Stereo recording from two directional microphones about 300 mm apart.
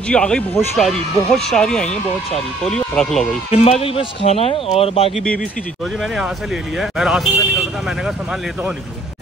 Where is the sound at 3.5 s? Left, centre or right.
Centre.